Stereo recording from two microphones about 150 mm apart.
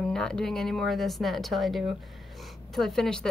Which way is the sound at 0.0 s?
5° left (ahead or behind).